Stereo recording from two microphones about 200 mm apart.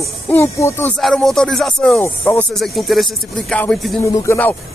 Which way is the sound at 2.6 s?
Centre (ahead or behind).